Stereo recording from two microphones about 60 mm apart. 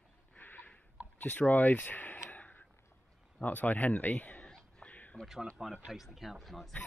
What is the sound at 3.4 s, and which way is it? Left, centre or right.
Speech, left.